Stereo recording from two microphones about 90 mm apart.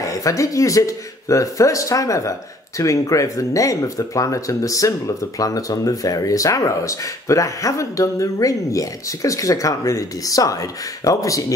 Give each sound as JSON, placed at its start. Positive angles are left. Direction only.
{"t": 0.1, "sound": "speech", "side_deg": 40}